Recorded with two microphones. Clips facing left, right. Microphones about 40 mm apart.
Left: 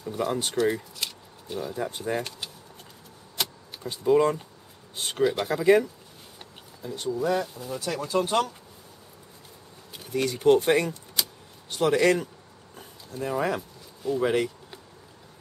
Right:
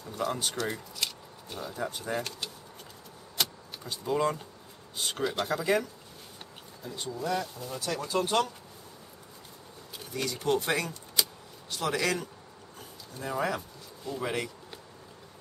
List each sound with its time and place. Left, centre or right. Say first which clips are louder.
0.0 s speech: left 4 dB; centre
3.4 s vehicle: even; centre
4.0 s speech: left 7 dB; centre
10.1 s speech: left 8 dB; left
11.2 s keys jangling: even; centre
11.7 s speech: left 8 dB; left
12.7 s a sound: left 7 dB; centre
13.6 s speech: left 4 dB; centre